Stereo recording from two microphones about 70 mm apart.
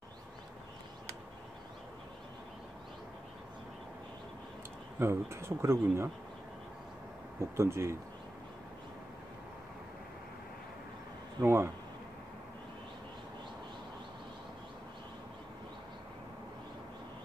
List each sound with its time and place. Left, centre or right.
4.9 s speech: right
7.3 s speech: right
11.4 s speech: right